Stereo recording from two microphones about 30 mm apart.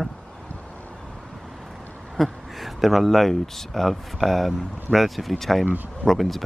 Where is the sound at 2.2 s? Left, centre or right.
Centre.